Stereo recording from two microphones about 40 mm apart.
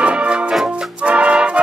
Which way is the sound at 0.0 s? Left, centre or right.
Right.